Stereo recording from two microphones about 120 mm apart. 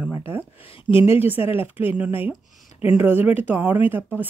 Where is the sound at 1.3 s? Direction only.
15° right (ahead or behind).